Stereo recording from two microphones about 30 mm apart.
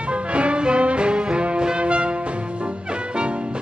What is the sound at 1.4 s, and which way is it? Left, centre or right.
Music, right.